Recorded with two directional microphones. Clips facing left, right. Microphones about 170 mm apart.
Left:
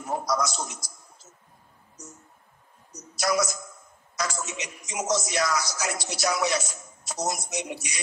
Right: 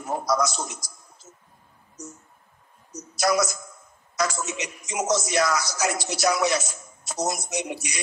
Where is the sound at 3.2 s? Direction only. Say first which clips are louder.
Right 3 dB; 60° right (ahead or behind).